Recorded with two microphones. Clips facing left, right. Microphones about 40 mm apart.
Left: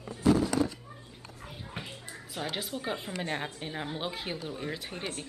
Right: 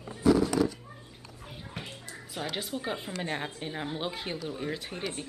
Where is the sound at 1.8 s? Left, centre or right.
Centre.